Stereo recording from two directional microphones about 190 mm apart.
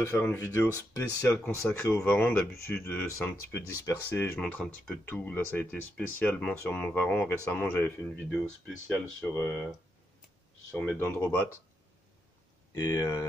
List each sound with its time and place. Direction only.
0.0 s speech: 15° left (ahead or behind)
10.8 s speech: 10° left (ahead or behind)
12.7 s speech: 15° left (ahead or behind)